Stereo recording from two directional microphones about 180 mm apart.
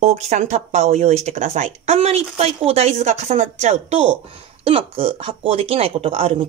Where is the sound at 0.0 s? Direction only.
40° right (ahead or behind).